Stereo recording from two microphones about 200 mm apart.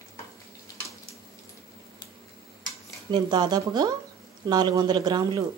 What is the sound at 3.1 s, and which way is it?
A woman's voice, 20° right (ahead or behind).